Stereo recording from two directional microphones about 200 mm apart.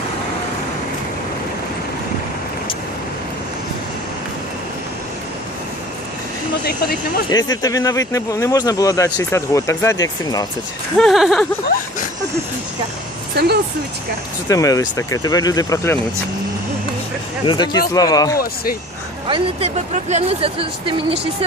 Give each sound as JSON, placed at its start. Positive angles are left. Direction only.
{"t": 7.2, "sound": "speech", "side_deg": 20}
{"t": 11.0, "sound": "speech", "side_deg": 0}
{"t": 13.4, "sound": "speech", "side_deg": -50}
{"t": 14.5, "sound": "speech", "side_deg": 15}
{"t": 17.5, "sound": "speech", "side_deg": 20}
{"t": 19.2, "sound": "speech", "side_deg": -25}